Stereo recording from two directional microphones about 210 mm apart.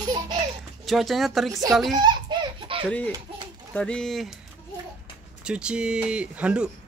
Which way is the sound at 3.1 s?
20° right (ahead or behind).